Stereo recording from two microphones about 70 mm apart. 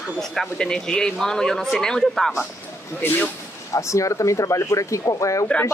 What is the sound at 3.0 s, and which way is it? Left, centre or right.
Speech, left.